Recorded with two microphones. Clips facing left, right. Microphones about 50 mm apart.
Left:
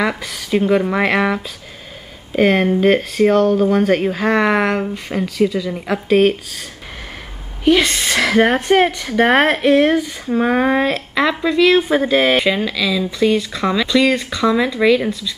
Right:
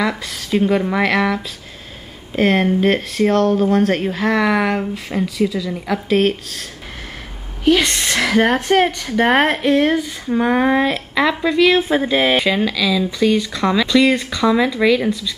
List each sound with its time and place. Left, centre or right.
0.2 s speech: centre
2.3 s speech: centre
4.6 s speech: centre
7.6 s speech: centre